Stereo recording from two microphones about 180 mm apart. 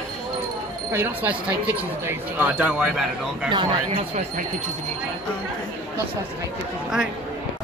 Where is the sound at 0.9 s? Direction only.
10° right (ahead or behind).